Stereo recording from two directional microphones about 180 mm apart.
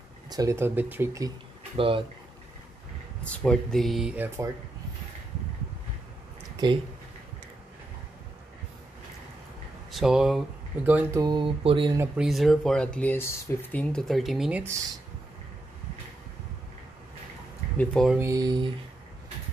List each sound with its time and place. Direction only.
0.3 s speech: 20° right (ahead or behind)
1.8 s speech: 30° right (ahead or behind)
3.4 s speech: centre (ahead or behind)
6.5 s a sound: 25° right (ahead or behind)
9.8 s speech: centre (ahead or behind)
11.1 s speech: 25° right (ahead or behind)
12.0 s speech: 5° right (ahead or behind)
17.7 s speech: centre (ahead or behind)
18.2 s speech: 20° right (ahead or behind)